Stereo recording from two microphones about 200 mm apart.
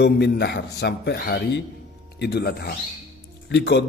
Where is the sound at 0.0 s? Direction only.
60° left (ahead or behind).